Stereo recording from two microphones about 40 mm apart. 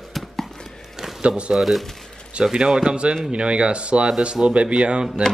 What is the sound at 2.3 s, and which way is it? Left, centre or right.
Speech, right.